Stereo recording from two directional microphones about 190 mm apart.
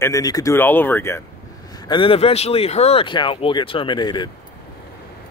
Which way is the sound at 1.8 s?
25° left (ahead or behind).